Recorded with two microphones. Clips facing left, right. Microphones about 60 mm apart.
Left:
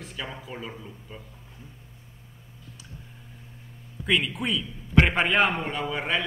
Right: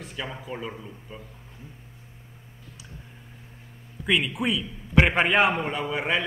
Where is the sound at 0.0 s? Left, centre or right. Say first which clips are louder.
Right 2 dB; centre.